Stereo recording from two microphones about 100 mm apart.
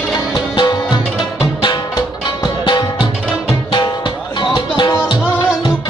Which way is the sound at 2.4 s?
50° left (ahead or behind).